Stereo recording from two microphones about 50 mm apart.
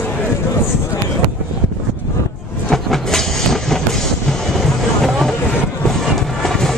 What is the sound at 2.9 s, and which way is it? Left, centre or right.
Train, centre.